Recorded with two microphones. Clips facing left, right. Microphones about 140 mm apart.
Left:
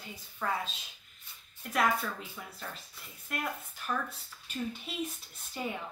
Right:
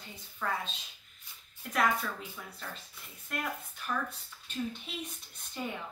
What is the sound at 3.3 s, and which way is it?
Speech, 5° left (ahead or behind).